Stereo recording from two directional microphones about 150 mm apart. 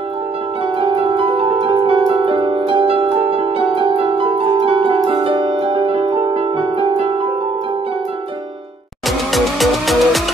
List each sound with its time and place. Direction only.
0.7 s music: 35° right (ahead or behind)
9.3 s music: centre (ahead or behind)